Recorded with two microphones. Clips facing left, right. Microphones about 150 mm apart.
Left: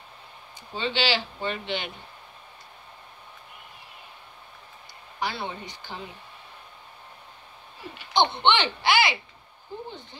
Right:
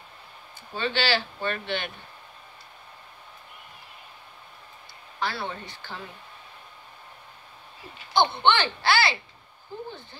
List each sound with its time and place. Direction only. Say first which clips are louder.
0.7 s speech: even; 15° left (ahead or behind)
5.2 s speech: even; 15° left (ahead or behind)
8.1 s speech: even; 20° left (ahead or behind)